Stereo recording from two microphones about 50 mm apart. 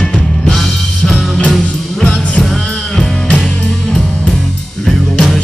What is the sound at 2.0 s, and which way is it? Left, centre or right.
Music, centre.